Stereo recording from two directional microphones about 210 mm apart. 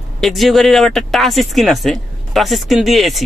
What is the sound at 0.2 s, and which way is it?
Speech, centre (ahead or behind).